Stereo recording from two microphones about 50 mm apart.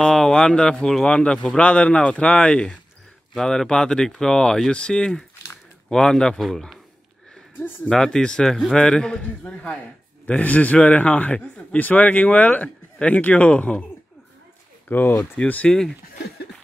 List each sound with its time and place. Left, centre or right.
0.0 s a sound: centre
0.5 s a man's voice: centre
7.9 s a man's voice: centre; by 11.3 s left
11.3 s a man's voice: left
11.8 s a man's voice: left
14.9 s speech: left
15.3 s a man's voice: left